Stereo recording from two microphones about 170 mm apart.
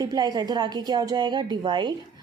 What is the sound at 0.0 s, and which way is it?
A woman's voice, 25° right (ahead or behind).